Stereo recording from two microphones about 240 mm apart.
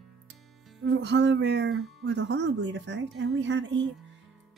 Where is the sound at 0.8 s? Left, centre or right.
Right.